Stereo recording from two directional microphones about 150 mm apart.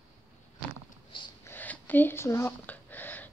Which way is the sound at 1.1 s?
35° left (ahead or behind).